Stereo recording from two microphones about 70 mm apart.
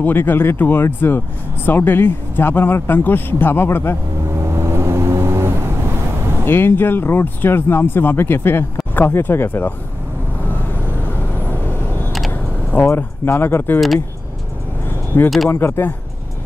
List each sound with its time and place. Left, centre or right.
0.0 s speech: left
4.3 s vehicle: right
6.4 s speech: left
11.3 s vehicle: left
12.8 s speech: left
15.2 s speech: centre
15.5 s speech: left